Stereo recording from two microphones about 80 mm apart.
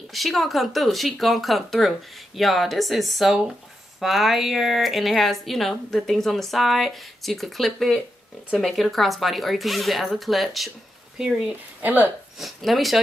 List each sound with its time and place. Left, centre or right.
0.1 s speech: centre
11.8 s speech: right
12.4 s speech: centre